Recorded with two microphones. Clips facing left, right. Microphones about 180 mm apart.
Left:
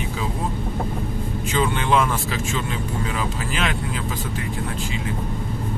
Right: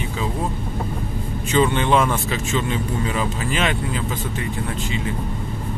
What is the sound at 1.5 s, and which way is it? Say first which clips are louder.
Speech: right 3 dB; 5° left (ahead or behind).